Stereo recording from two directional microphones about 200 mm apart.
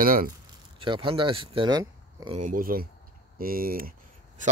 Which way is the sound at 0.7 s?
25° right (ahead or behind).